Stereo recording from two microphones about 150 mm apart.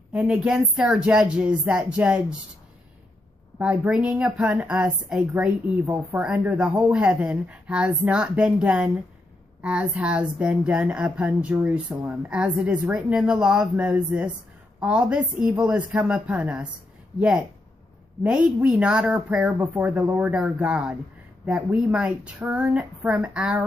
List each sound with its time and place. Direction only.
0.1 s a woman's voice: 5° right (ahead or behind)
3.5 s a woman's voice: 10° right (ahead or behind)